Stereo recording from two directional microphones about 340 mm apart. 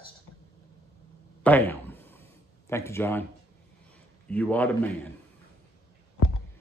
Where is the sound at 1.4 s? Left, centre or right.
Centre.